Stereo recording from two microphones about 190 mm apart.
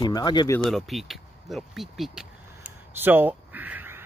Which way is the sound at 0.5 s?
Centre (ahead or behind).